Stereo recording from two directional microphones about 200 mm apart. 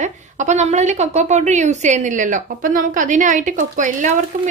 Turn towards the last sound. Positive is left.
turn(degrees=-35)  # may be behind; listen again after turning